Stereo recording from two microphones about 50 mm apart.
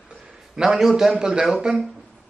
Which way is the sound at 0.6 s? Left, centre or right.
Centre.